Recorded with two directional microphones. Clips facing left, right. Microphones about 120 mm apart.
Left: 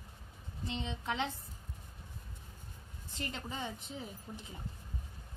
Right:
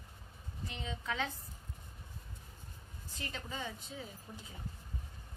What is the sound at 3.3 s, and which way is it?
A woman's voice, 20° left (ahead or behind).